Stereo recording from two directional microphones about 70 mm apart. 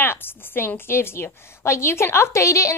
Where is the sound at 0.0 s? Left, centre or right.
Left.